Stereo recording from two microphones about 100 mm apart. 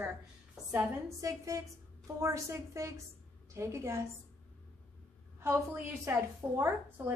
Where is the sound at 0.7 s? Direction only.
25° right (ahead or behind).